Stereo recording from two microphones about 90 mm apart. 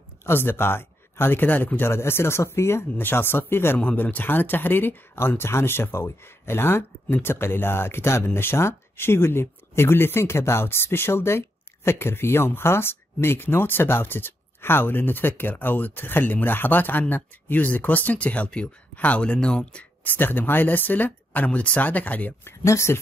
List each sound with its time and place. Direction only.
0.2 s speech: 25° left (ahead or behind)